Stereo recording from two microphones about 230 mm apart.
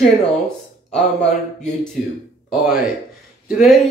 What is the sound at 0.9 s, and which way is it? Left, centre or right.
Speech, centre.